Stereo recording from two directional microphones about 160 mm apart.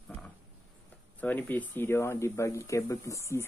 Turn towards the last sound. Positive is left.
turn(degrees=15)  # may be behind; listen again after turning